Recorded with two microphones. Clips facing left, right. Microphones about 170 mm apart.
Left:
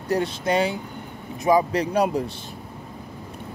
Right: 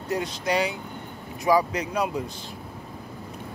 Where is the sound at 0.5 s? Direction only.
25° left (ahead or behind).